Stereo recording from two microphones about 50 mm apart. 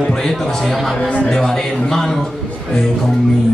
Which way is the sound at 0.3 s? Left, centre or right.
Centre.